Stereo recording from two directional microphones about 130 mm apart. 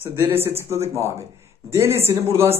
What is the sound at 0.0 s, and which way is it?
Speech, 20° right (ahead or behind).